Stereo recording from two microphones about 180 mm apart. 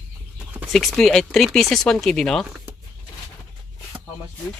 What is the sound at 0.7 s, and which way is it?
Speech, centre (ahead or behind).